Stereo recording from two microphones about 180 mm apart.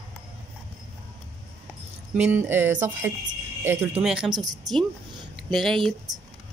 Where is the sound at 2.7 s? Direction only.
45° right (ahead or behind).